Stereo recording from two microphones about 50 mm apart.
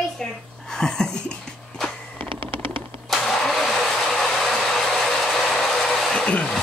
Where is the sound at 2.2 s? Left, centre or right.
Left.